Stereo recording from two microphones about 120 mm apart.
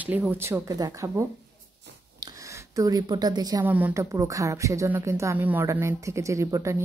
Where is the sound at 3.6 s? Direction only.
15° right (ahead or behind).